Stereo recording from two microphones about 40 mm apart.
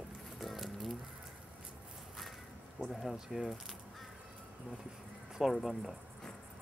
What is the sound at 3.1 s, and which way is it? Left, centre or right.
Speech, centre.